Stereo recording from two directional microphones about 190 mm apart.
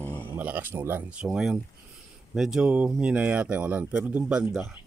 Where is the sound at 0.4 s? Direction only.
10° right (ahead or behind).